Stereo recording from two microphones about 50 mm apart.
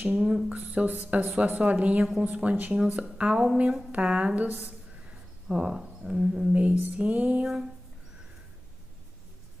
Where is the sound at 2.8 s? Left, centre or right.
Centre.